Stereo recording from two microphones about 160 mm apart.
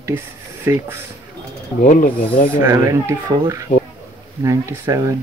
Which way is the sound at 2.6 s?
20° right (ahead or behind).